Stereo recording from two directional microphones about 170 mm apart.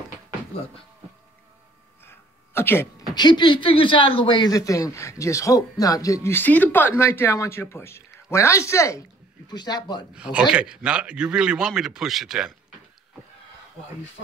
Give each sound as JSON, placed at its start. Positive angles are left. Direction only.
{"t": 2.0, "sound": "a sound", "side_deg": 15}
{"t": 3.2, "sound": "speech", "side_deg": 25}
{"t": 10.1, "sound": "a man's voice", "side_deg": -5}